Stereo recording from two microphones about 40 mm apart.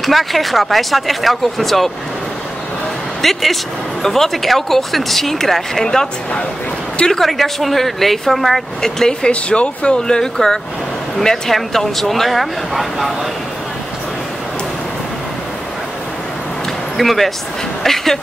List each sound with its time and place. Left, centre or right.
0.0 s speech: centre
3.2 s speech: centre
7.1 s speech: centre
8.8 s speech: centre
9.3 s speech: left
9.9 s speech: centre
16.9 s speech: centre